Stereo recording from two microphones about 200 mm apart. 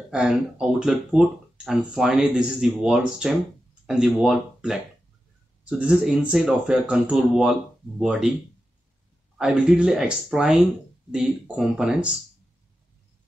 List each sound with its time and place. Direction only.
0.1 s speech: 5° right (ahead or behind)
9.4 s speech: 5° right (ahead or behind)